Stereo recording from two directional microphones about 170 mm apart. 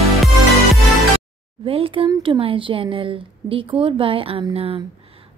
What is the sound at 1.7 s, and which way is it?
Speech, 30° right (ahead or behind).